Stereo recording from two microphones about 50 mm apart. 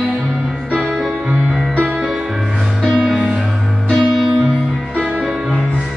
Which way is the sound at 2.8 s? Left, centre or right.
Centre.